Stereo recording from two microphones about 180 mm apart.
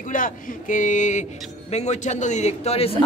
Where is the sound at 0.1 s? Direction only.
50° left (ahead or behind).